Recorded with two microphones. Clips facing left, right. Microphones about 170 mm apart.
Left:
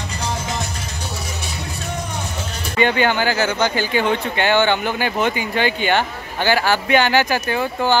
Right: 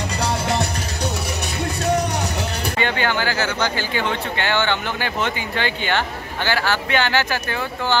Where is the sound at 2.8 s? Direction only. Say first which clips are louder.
Left 5 dB; 15° left (ahead or behind).